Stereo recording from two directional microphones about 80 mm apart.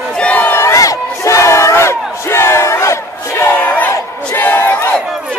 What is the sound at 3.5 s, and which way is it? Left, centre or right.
Crowd, left.